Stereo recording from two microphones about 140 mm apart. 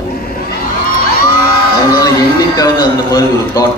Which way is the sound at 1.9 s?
25° left (ahead or behind).